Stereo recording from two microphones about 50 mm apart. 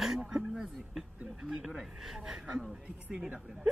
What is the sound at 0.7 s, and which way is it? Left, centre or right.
Speech, centre.